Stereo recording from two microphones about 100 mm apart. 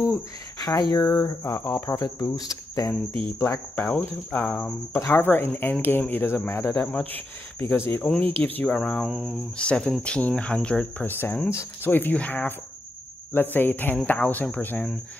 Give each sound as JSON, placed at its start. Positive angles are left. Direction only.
{"t": 0.0, "sound": "speech", "side_deg": 30}
{"t": 4.9, "sound": "speech", "side_deg": 25}
{"t": 8.0, "sound": "speech", "side_deg": 10}
{"t": 9.6, "sound": "speech", "side_deg": 10}